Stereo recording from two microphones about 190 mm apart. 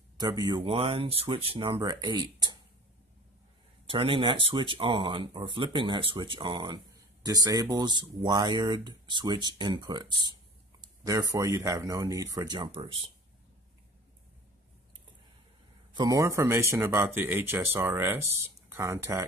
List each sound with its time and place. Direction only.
0.2 s speech: 20° right (ahead or behind)
3.8 s speech: 30° right (ahead or behind)
15.9 s speech: 20° right (ahead or behind)